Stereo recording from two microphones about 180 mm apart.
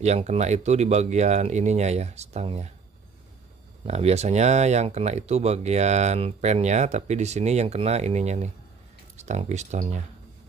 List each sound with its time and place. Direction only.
0.0 s speech: 40° right (ahead or behind)
3.8 s speech: 35° right (ahead or behind)